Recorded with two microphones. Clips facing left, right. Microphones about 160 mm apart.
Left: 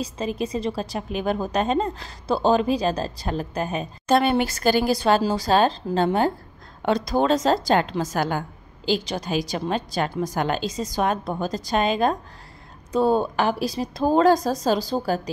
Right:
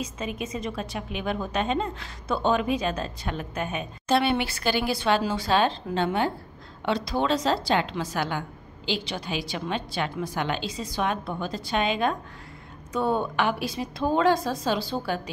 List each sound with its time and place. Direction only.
0.0 s a woman's voice: 35° left (ahead or behind)